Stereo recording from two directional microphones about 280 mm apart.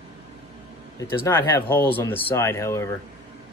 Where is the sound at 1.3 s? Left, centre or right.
Centre.